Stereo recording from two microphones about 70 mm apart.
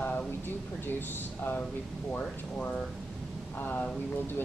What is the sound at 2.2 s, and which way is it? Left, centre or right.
Speech, centre.